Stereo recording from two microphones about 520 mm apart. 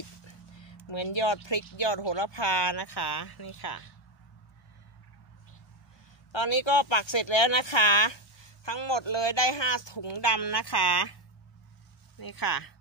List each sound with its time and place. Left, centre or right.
0.6 s speech: left
6.3 s speech: left
12.2 s speech: left